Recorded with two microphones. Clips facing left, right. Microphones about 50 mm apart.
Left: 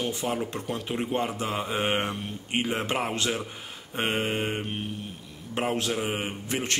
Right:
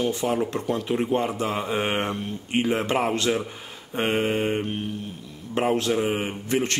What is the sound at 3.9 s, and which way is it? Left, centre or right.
Speech, centre.